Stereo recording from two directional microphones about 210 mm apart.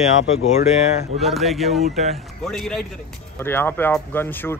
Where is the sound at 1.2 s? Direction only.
Centre (ahead or behind).